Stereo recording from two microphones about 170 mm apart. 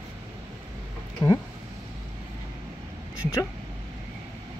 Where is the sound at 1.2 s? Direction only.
15° left (ahead or behind).